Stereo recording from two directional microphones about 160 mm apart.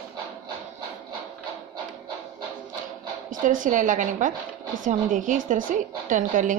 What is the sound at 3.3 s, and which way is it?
A woman's voice, 55° right (ahead or behind).